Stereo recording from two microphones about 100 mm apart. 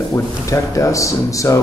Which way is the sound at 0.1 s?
30° left (ahead or behind).